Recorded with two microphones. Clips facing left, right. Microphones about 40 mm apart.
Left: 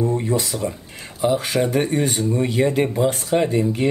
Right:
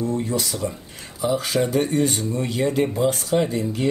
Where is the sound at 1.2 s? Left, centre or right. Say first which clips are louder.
Left 2 dB; left.